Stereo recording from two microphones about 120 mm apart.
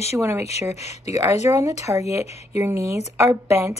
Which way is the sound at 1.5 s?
25° right (ahead or behind).